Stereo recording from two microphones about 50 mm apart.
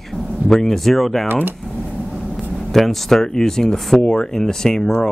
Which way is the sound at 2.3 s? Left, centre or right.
Centre.